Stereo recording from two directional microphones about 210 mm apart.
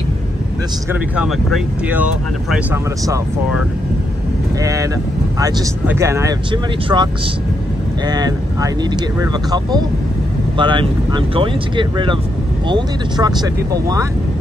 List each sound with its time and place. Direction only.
1.1 s speech: 5° right (ahead or behind)
5.4 s speech: 15° right (ahead or behind)
8.1 s speech: 15° right (ahead or behind)